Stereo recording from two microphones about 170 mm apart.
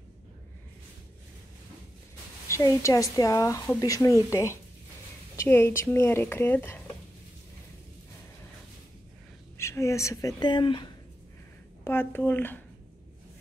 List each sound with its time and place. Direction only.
2.4 s speech: 15° left (ahead or behind)
9.6 s speech: 15° left (ahead or behind)
11.8 s speech: 10° left (ahead or behind)